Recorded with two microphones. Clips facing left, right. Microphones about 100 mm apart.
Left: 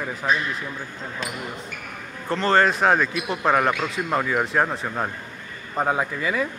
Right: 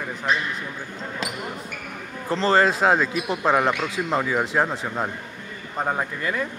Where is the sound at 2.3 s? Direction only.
30° right (ahead or behind).